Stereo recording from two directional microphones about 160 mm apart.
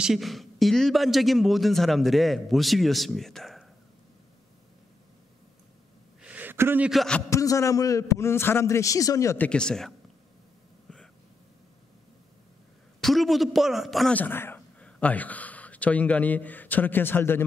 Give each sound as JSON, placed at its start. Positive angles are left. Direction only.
{"t": 0.0, "sound": "speech", "side_deg": 0}
{"t": 6.2, "sound": "a sound", "side_deg": -10}
{"t": 6.9, "sound": "speech", "side_deg": 5}
{"t": 7.2, "sound": "a man's voice", "side_deg": 20}
{"t": 9.5, "sound": "speech", "side_deg": 5}
{"t": 10.9, "sound": "a sound", "side_deg": 5}
{"t": 13.0, "sound": "a man's voice", "side_deg": 0}